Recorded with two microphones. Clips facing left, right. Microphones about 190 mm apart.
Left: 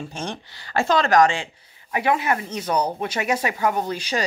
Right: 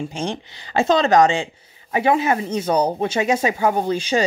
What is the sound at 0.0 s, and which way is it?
Speech, 15° right (ahead or behind).